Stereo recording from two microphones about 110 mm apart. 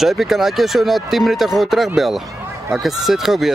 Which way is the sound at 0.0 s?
Centre (ahead or behind).